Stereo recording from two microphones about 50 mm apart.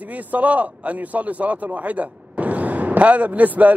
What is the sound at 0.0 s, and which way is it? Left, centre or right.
A man's voice, right.